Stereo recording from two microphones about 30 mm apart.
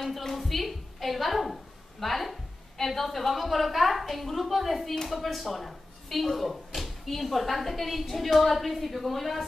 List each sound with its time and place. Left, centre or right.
0.4 s a woman's voice: centre